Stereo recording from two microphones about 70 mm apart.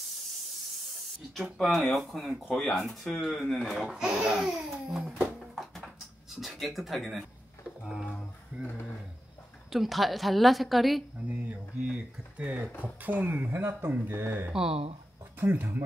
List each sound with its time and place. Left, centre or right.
1.6 s a woman's voice: centre
3.9 s speech: centre
4.7 s a sound: centre
6.4 s speech: centre
8.0 s a sound: centre
8.5 s speech: centre
9.7 s a woman's voice: centre
11.2 s speech: right
14.5 s speech: centre
15.3 s speech: right